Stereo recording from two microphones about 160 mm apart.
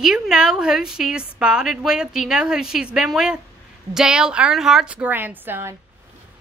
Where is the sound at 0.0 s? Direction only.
5° right (ahead or behind).